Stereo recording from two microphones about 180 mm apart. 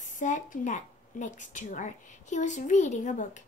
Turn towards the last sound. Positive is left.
turn(degrees=45)  # may be behind; listen again after turning